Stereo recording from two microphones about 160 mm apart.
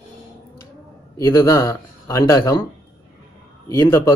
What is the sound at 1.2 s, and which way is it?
Speech, 25° left (ahead or behind).